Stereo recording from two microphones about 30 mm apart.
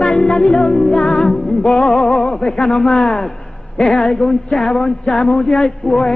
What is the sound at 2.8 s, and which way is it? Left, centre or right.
Music, centre.